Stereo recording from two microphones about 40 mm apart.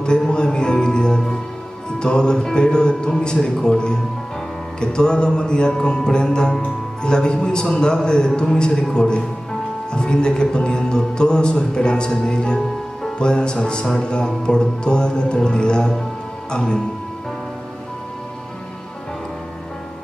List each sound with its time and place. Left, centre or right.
0.0 s speech: left